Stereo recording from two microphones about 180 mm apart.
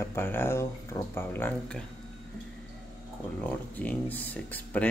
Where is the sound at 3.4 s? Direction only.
10° left (ahead or behind).